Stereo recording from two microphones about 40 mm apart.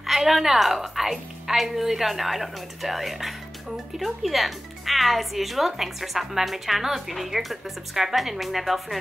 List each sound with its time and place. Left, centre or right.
0.0 s speech: centre